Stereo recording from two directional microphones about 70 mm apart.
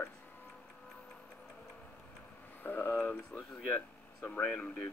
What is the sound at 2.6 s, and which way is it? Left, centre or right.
Speech, left.